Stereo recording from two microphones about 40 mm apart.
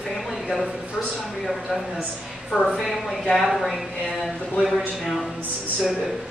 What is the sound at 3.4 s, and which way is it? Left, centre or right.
Speech, centre.